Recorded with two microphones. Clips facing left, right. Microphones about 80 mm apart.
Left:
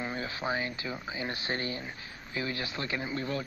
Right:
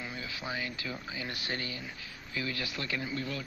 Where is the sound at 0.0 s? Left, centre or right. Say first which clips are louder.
Left 6 dB; left.